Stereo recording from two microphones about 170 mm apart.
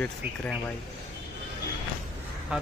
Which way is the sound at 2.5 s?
5° right (ahead or behind).